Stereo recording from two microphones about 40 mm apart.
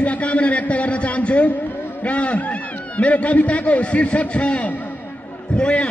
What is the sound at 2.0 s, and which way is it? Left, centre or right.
A man's voice, left.